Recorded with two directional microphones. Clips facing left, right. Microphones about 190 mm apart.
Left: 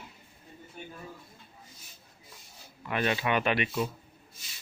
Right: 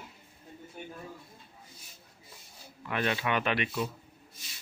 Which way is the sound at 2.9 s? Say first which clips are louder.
Left 2 dB; 5° left (ahead or behind).